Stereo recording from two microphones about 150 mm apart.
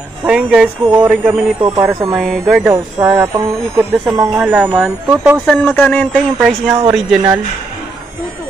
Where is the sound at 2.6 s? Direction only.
15° right (ahead or behind).